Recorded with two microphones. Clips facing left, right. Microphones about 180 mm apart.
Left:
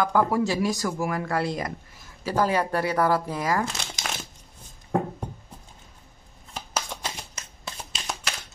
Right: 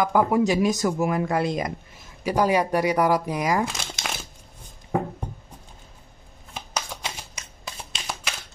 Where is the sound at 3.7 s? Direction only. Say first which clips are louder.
Right 1 dB; centre (ahead or behind).